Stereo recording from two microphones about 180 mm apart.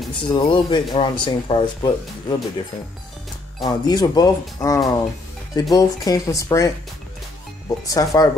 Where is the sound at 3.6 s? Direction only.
25° left (ahead or behind).